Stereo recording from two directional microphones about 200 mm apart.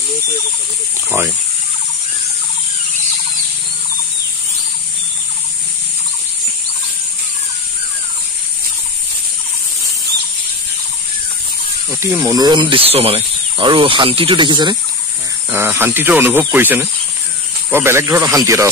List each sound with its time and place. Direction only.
12.0 s speech: 15° right (ahead or behind)
15.5 s speech: 10° right (ahead or behind)